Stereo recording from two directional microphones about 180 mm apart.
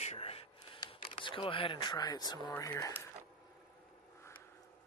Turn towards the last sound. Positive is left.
turn(degrees=15)  # may be behind; listen again after turning